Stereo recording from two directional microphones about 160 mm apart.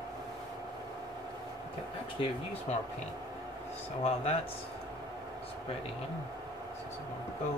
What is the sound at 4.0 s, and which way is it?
Speech, 40° left (ahead or behind).